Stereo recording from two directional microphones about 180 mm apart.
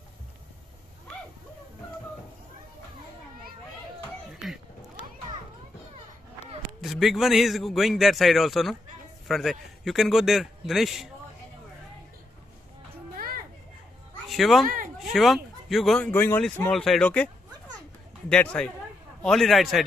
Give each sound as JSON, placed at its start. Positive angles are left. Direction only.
{"t": 4.4, "sound": "a sound", "side_deg": 0}
{"t": 6.8, "sound": "speech", "side_deg": 0}
{"t": 14.3, "sound": "speech", "side_deg": 0}
{"t": 14.7, "sound": "a sound", "side_deg": -50}
{"t": 15.1, "sound": "speech", "side_deg": 0}
{"t": 18.3, "sound": "a man's voice", "side_deg": 5}